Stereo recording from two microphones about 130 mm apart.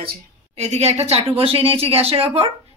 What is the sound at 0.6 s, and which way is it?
Speech, 55° right (ahead or behind).